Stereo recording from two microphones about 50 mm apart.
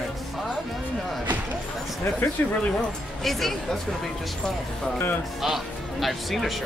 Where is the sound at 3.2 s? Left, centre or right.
Centre.